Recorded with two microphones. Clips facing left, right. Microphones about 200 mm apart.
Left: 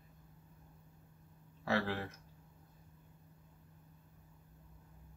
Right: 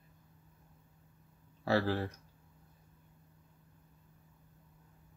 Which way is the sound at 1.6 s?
35° right (ahead or behind).